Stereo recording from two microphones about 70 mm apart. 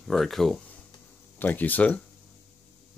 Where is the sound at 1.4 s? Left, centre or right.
Left.